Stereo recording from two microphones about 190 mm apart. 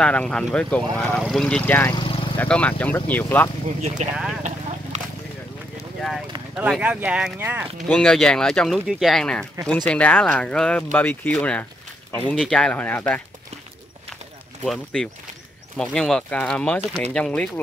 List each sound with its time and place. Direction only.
0.0 s speech: 5° left (ahead or behind)
2.0 s vehicle: 30° left (ahead or behind)
2.3 s speech: 5° left (ahead or behind)
4.0 s speech: 35° right (ahead or behind)
4.4 s clip-clop: 40° right (ahead or behind)
5.9 s clip-clop: centre (ahead or behind)
6.5 s speech: 5° right (ahead or behind)
14.6 s speech: 5° left (ahead or behind)